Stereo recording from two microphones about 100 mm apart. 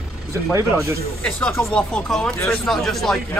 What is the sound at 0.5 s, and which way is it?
Speech, 30° right (ahead or behind).